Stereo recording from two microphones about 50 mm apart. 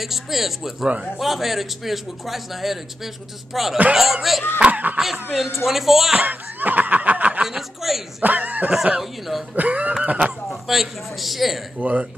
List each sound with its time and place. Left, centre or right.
0.0 s a man's voice: centre
4.6 s speech: right
5.0 s a man's voice: centre
6.1 s snicker: right
7.4 s a man's voice: centre
8.2 s speech: right
9.6 s a sound: right
10.5 s a man's voice: centre
11.8 s a sound: right